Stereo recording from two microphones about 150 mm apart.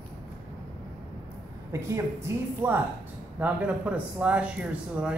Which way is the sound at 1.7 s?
20° right (ahead or behind).